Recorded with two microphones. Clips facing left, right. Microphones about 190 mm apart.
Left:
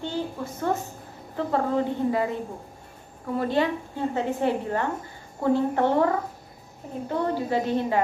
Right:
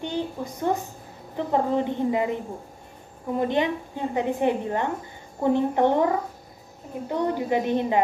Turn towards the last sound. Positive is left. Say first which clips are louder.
# right 1 dB
turn(degrees=-20)  # may be behind; listen again after turning